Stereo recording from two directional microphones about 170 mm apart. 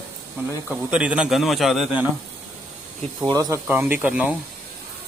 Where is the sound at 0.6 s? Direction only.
5° right (ahead or behind).